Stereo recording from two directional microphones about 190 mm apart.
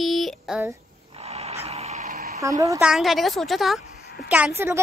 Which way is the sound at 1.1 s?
30° right (ahead or behind).